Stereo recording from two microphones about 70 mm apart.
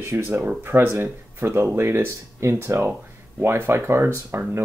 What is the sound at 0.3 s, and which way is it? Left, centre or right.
Speech, right.